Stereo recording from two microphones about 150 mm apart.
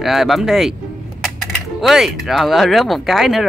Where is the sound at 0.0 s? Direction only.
Centre (ahead or behind).